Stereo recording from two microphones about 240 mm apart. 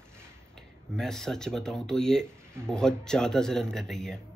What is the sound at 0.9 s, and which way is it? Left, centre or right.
Speech, centre.